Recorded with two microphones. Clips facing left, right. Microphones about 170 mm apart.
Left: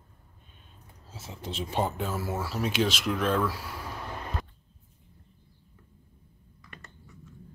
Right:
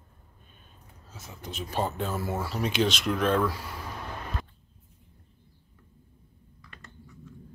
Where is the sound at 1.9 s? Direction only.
5° left (ahead or behind).